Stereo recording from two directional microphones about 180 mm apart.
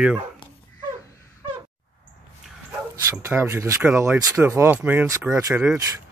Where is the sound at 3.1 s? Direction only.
15° right (ahead or behind).